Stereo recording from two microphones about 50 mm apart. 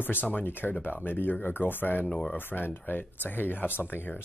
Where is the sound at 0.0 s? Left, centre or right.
Left.